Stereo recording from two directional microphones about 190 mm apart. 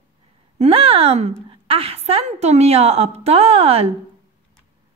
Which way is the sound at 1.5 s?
30° right (ahead or behind).